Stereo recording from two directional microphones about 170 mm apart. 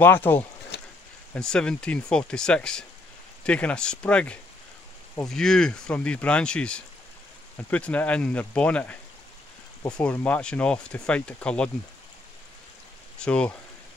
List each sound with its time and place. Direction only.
0.0 s speech: 10° left (ahead or behind)
0.7 s a sound: 75° left (ahead or behind)
1.3 s speech: 5° left (ahead or behind)
13.2 s speech: 5° left (ahead or behind)